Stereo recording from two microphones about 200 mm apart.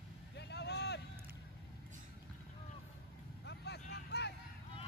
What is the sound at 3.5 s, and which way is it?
Vehicle, 55° left (ahead or behind).